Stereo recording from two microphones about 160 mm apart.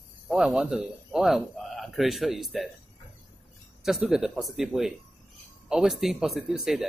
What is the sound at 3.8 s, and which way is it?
Speech, centre (ahead or behind).